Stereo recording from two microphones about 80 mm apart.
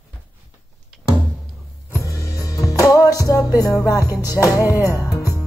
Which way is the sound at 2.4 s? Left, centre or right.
Left.